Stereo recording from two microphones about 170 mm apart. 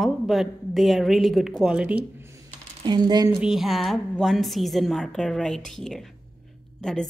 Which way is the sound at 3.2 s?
5° right (ahead or behind).